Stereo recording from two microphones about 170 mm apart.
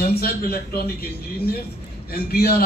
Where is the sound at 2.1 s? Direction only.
60° left (ahead or behind).